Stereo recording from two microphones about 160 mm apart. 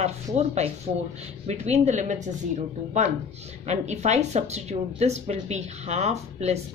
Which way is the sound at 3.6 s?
45° right (ahead or behind).